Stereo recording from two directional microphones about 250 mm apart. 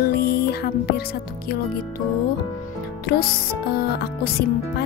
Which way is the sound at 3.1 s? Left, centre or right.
Left.